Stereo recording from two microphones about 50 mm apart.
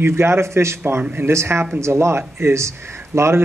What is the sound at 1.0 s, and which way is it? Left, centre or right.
Speech, right.